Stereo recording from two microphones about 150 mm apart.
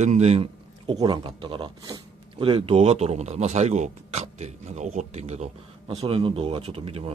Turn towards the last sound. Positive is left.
turn(degrees=-40)  # may be behind; listen again after turning